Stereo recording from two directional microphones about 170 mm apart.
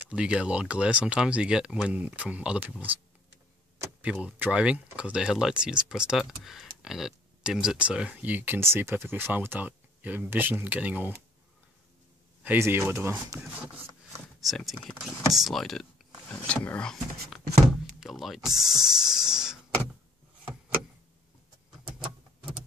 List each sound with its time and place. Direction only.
0.0 s speech: 5° right (ahead or behind)
4.0 s speech: 5° right (ahead or behind)
12.4 s speech: 15° right (ahead or behind)